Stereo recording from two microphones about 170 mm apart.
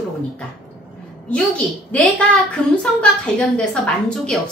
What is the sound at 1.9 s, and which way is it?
A woman's voice, 10° left (ahead or behind).